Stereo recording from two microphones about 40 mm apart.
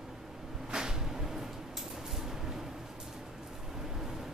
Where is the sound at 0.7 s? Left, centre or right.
Centre.